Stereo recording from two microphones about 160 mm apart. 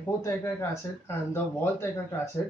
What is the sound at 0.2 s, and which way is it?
Speech, 15° left (ahead or behind).